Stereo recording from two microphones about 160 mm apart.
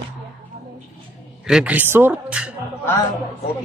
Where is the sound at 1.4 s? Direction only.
5° right (ahead or behind).